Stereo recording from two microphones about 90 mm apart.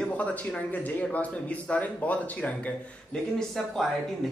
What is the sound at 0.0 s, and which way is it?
A man's voice, 15° left (ahead or behind).